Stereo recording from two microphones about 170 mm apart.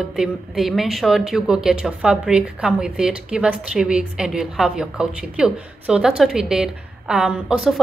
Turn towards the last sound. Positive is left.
turn(degrees=0)  # may be behind; listen again after turning